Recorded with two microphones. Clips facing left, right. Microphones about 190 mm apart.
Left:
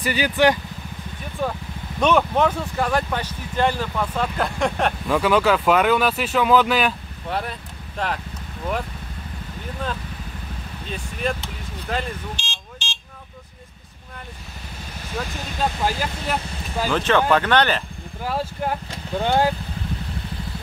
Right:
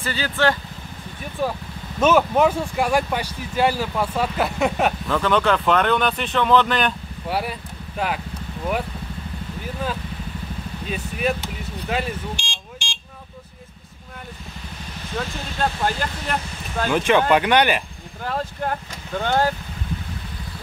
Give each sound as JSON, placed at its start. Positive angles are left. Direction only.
{"t": 0.0, "sound": "speech", "side_deg": 15}
{"t": 1.4, "sound": "speech", "side_deg": -5}
{"t": 5.0, "sound": "speech", "side_deg": 10}
{"t": 7.2, "sound": "speech", "side_deg": -10}
{"t": 10.9, "sound": "speech", "side_deg": -5}
{"t": 11.9, "sound": "a sound", "side_deg": -10}
{"t": 15.1, "sound": "speech", "side_deg": 5}
{"t": 16.9, "sound": "speech", "side_deg": -10}
{"t": 18.2, "sound": "speech", "side_deg": 10}